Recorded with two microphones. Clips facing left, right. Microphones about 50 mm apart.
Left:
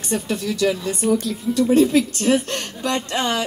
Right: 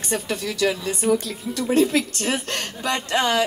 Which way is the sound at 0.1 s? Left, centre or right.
Centre.